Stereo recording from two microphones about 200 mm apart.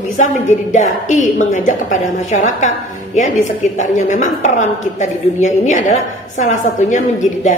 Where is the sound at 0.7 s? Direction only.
40° left (ahead or behind).